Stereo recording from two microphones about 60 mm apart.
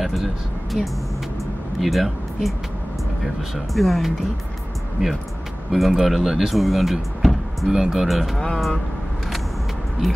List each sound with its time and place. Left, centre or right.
0.0 s speech: centre
3.5 s speech: centre
5.0 s speech: centre